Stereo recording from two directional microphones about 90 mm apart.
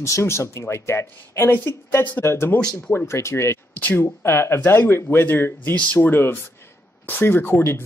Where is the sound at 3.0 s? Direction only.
30° left (ahead or behind).